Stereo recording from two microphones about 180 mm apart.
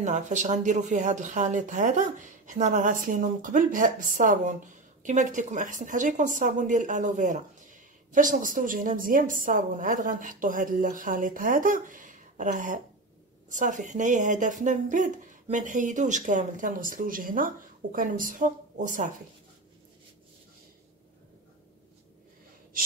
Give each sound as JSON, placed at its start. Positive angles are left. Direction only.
{"t": 0.0, "sound": "speech", "side_deg": -40}